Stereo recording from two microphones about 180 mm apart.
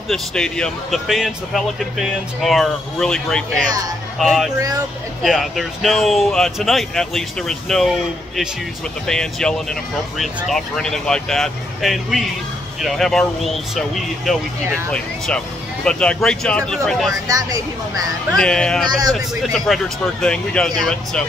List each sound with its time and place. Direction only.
0.1 s speech: 5° left (ahead or behind)
4.6 s speech: 20° right (ahead or behind)
5.2 s speech: centre (ahead or behind)
17.3 s speech: 20° right (ahead or behind)
18.3 s speech: 5° left (ahead or behind)